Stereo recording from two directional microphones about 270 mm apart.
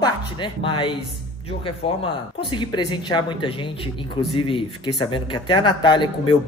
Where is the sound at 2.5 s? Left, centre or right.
Centre.